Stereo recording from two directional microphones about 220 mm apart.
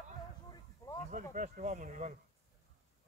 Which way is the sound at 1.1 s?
35° right (ahead or behind).